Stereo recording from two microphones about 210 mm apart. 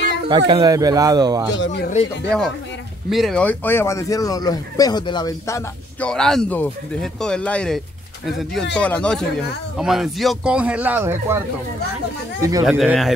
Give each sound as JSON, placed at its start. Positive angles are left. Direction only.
{"t": 0.3, "sound": "speech", "side_deg": -20}
{"t": 1.5, "sound": "speech", "side_deg": 60}
{"t": 3.1, "sound": "speech", "side_deg": 0}
{"t": 5.9, "sound": "speech", "side_deg": 5}
{"t": 12.6, "sound": "speech", "side_deg": 0}